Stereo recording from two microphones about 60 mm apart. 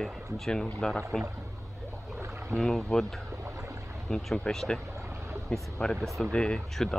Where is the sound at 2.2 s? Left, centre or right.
Right.